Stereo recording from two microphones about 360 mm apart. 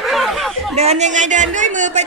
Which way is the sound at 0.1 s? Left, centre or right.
Centre.